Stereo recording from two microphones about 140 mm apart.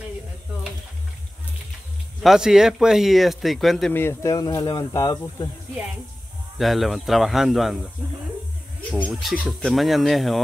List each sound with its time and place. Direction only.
2.2 s speech: 5° right (ahead or behind)
3.9 s speech: 15° left (ahead or behind)
6.6 s speech: centre (ahead or behind)
8.9 s speech: 5° left (ahead or behind)